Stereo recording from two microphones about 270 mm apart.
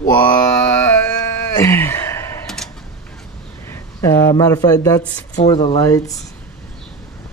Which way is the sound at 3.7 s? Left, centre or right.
Centre.